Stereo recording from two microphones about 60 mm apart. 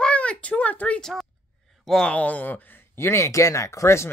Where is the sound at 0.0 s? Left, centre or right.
Centre.